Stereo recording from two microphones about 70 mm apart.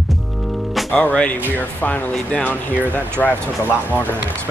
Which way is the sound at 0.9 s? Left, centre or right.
Centre.